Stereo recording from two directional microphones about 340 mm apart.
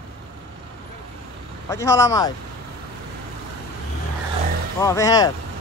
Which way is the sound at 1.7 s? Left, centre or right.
Centre.